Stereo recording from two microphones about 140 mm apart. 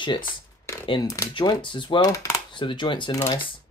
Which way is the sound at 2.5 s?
35° left (ahead or behind).